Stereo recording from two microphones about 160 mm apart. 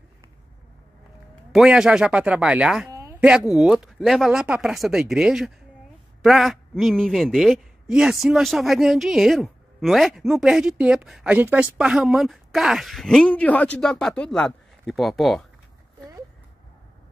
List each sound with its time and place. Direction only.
1.5 s speech: 5° right (ahead or behind)
2.9 s a sound: 20° right (ahead or behind)
3.2 s a man's voice: 5° right (ahead or behind)